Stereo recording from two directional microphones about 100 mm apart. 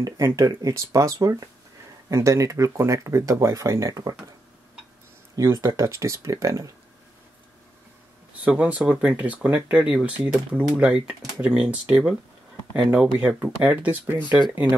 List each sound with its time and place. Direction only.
0.0 s speech: 30° right (ahead or behind)
5.3 s speech: 35° right (ahead or behind)
8.5 s speech: 10° right (ahead or behind)
13.4 s speech: 15° right (ahead or behind)